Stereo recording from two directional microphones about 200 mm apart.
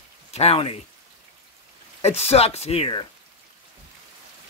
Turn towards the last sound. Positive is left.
turn(degrees=25)  # may be behind; listen again after turning